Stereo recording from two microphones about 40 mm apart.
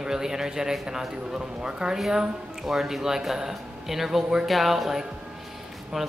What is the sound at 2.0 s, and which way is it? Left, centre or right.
Speech, centre.